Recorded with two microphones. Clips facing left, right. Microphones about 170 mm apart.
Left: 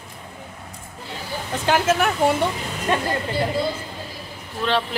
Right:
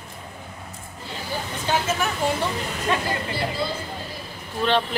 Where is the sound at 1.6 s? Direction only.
90° left.